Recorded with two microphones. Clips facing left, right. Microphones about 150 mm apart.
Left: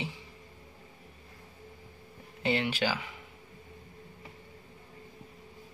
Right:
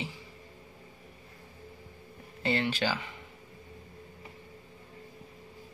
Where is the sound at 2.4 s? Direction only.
10° left (ahead or behind).